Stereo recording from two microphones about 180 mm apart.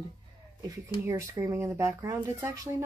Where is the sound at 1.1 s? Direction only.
15° right (ahead or behind).